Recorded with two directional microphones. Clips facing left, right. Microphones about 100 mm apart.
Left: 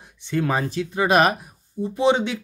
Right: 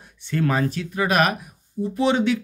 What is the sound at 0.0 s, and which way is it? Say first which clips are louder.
Speech: even; 20° left (ahead or behind).